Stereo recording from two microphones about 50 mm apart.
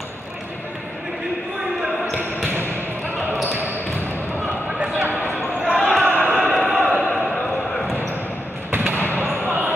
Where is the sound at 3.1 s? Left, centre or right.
Right.